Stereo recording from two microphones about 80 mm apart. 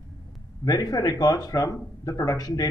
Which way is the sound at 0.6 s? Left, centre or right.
Left.